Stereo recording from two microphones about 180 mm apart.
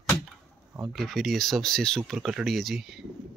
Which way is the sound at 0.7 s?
Centre (ahead or behind).